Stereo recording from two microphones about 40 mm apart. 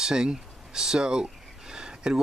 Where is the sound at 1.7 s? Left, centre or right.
Centre.